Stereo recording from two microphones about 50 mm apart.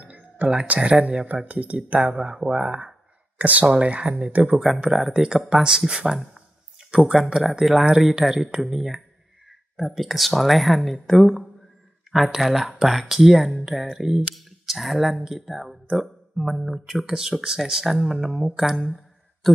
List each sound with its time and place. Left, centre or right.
0.0 s music: right
0.7 s speech: centre
2.1 s speech: centre
3.3 s speech: right
4.9 s speech: centre
6.1 s a sound: centre
7.4 s speech: centre
12.1 s speech: centre